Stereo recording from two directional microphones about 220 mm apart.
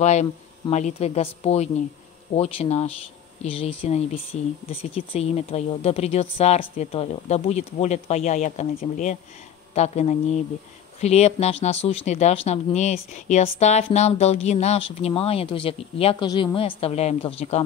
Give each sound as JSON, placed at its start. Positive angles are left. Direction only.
{"t": 0.0, "sound": "speech", "side_deg": 30}